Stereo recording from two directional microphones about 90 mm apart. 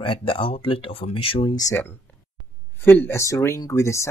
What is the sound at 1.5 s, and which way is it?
Speech, 40° left (ahead or behind).